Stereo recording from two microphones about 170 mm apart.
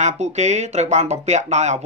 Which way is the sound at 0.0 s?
40° right (ahead or behind).